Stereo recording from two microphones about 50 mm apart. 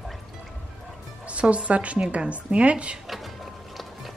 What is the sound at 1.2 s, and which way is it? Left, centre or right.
A woman's voice, right.